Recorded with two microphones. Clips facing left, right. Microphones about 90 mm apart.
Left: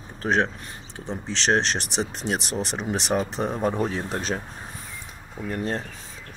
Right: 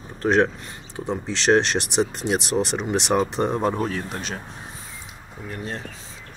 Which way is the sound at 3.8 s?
30° left (ahead or behind).